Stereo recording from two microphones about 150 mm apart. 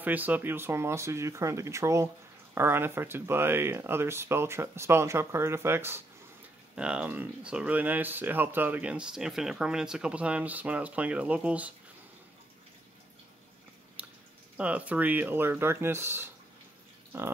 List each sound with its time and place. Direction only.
0.0 s speech: 10° right (ahead or behind)
14.0 s drip: 10° right (ahead or behind)
14.6 s speech: 10° right (ahead or behind)